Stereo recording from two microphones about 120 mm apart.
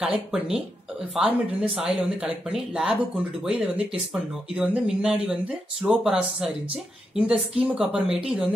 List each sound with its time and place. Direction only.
0.0 s speech: 5° right (ahead or behind)